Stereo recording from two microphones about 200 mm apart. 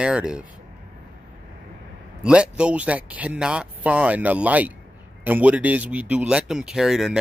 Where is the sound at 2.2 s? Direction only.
5° right (ahead or behind).